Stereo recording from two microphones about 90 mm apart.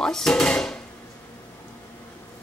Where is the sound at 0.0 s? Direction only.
5° left (ahead or behind).